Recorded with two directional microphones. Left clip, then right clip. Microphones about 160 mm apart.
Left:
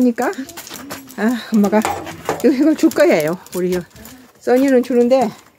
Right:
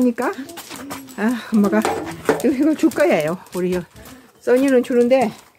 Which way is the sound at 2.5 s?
60° left (ahead or behind).